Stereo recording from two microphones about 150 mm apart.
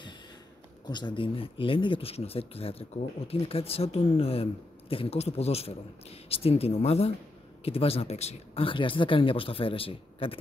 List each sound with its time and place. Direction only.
0.8 s speech: 30° left (ahead or behind)